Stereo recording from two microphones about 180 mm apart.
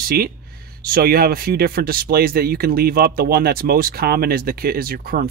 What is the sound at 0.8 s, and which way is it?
Speech, 55° right (ahead or behind).